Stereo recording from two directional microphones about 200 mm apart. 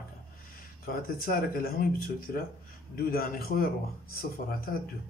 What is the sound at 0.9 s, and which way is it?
Speech, 45° left (ahead or behind).